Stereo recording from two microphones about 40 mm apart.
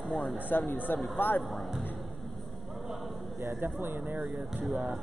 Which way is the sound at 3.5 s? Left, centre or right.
Right.